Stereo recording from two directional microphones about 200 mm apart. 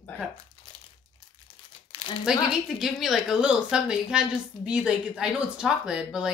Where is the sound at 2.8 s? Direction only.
Centre (ahead or behind).